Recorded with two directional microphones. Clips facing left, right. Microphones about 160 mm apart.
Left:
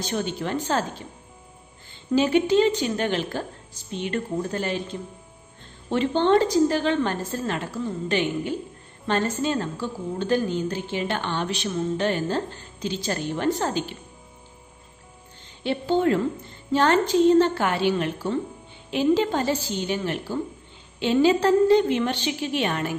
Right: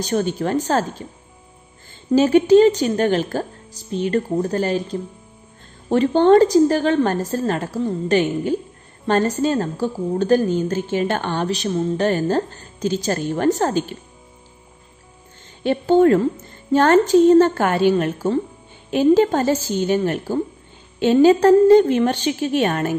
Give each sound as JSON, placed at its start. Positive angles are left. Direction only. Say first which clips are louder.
{"t": 0.0, "sound": "a woman's voice", "louder": "right 7 dB", "side_deg": -40}
{"t": 2.1, "sound": "a woman's voice", "louder": "right 7 dB", "side_deg": -40}
{"t": 15.6, "sound": "a woman's voice", "louder": "right 8 dB", "side_deg": -45}